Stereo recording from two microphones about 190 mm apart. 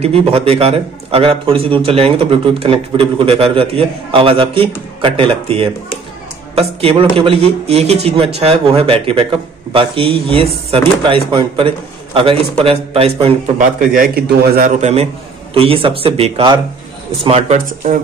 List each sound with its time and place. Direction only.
0.0 s a man's voice: 30° right (ahead or behind); by 14.7 s 55° right (ahead or behind)
14.8 s a man's voice: 35° right (ahead or behind)